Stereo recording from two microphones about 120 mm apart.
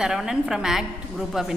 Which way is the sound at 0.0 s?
5° right (ahead or behind).